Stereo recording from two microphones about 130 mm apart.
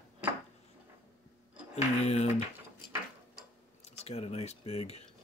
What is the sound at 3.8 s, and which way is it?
Speech, 55° left (ahead or behind).